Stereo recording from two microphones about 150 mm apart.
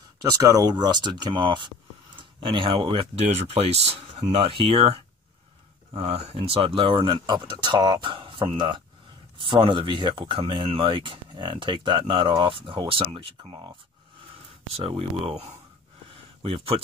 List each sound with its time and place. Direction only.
0.2 s speech: 25° right (ahead or behind)